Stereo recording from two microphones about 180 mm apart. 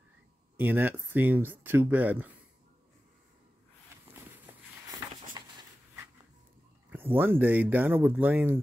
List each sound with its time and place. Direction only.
0.6 s speech: 10° right (ahead or behind)
5.4 s a sound: 20° right (ahead or behind)
6.9 s speech: 10° right (ahead or behind)